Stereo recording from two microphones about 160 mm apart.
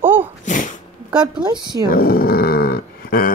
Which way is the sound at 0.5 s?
55° left (ahead or behind).